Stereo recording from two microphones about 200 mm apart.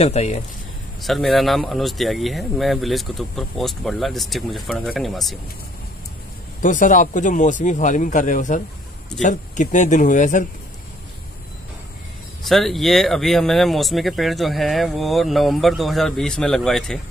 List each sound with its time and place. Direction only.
0.0 s a man's voice: 35° left (ahead or behind)
1.0 s speech: centre (ahead or behind)
6.6 s a man's voice: 40° left (ahead or behind)
12.4 s speech: centre (ahead or behind)